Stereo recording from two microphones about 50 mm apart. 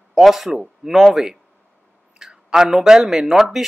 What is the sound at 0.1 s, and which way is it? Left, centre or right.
Speech, centre.